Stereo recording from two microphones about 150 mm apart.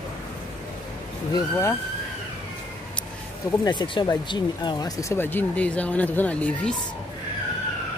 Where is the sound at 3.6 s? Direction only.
30° left (ahead or behind); by 6.7 s 10° left (ahead or behind).